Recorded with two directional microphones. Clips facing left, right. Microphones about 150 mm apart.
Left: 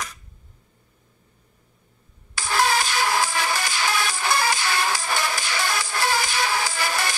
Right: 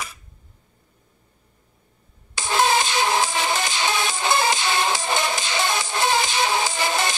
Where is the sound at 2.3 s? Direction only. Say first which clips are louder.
Right 2 dB; 20° right (ahead or behind).